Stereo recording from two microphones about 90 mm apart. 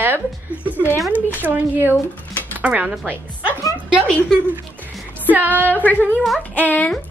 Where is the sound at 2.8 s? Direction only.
5° right (ahead or behind).